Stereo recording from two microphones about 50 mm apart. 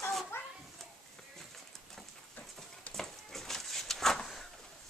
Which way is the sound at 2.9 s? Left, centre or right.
Centre.